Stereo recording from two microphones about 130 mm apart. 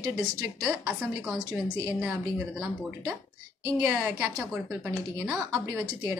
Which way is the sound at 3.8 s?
10° right (ahead or behind).